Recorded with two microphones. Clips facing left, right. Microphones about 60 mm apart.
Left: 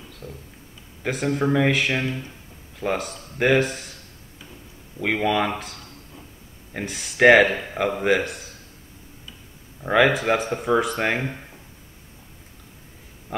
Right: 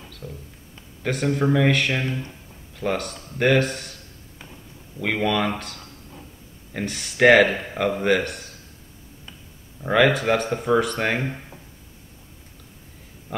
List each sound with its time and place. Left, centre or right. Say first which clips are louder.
0.2 s speech: right 1 dB; centre
1.0 s speech: right 1 dB; centre
5.0 s speech: left 1 dB; centre
6.7 s speech: right 2 dB; centre
9.8 s speech: even; centre
13.3 s a sound: left 1 dB; centre